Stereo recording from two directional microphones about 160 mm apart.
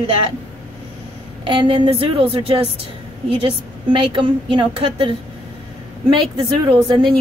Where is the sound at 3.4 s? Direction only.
35° right (ahead or behind).